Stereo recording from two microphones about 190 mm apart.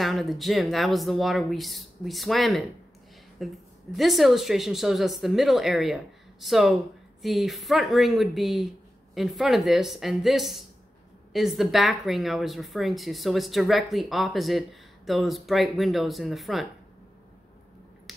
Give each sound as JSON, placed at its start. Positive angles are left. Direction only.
{"t": 0.0, "sound": "speech", "side_deg": 0}